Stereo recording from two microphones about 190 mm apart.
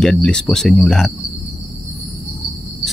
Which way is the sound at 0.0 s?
Centre (ahead or behind).